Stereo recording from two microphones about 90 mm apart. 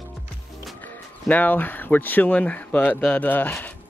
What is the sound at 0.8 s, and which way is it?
Speech, 20° left (ahead or behind).